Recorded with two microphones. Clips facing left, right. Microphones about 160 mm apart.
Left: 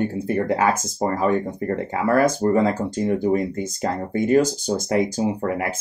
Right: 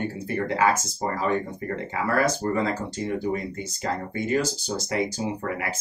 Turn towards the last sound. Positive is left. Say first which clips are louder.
# left 6 dB
turn(degrees=45)  # may be behind; listen again after turning